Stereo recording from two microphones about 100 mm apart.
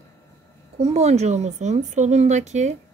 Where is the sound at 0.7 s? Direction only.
90° right.